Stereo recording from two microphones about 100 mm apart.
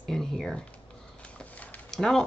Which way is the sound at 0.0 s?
5° left (ahead or behind).